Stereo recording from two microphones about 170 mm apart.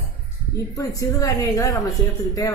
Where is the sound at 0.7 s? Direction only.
20° left (ahead or behind).